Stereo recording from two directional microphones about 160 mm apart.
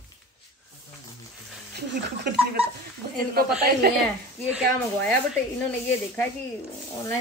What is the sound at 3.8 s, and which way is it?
Speech, 80° right.